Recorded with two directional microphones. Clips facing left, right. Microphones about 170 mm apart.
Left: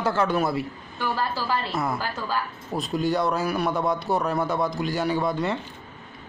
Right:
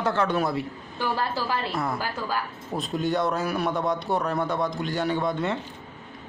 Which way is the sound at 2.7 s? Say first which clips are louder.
Left 2 dB; centre (ahead or behind).